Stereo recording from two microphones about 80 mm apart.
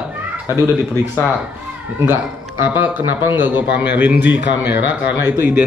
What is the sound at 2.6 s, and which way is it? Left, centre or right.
A man's voice, right.